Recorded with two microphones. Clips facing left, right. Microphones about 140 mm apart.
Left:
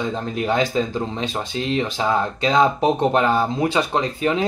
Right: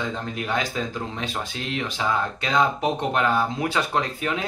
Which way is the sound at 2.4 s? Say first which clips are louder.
Left 7 dB; 30° left (ahead or behind).